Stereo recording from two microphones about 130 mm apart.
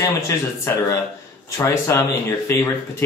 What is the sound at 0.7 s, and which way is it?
Speech, 20° left (ahead or behind).